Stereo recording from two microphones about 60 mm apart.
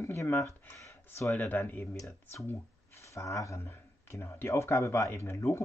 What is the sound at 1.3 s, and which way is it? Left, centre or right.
Speech, left.